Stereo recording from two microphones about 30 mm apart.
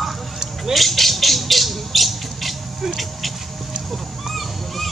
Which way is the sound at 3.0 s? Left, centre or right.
Centre.